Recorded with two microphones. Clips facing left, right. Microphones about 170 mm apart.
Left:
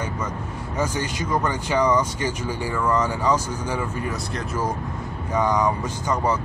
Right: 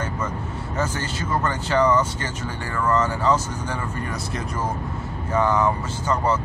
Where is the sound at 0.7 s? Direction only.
15° left (ahead or behind).